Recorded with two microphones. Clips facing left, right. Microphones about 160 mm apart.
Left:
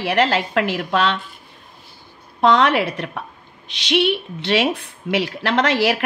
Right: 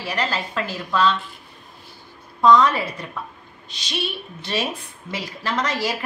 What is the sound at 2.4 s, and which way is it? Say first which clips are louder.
A woman's voice: even; 70° left (ahead or behind).